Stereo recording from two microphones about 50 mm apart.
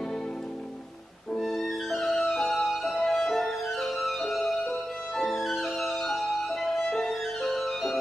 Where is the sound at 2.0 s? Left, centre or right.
Centre.